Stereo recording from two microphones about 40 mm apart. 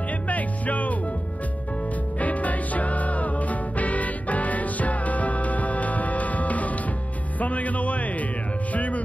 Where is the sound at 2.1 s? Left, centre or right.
Left.